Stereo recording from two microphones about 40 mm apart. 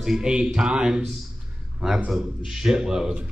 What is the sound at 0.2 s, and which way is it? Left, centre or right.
Speech, right.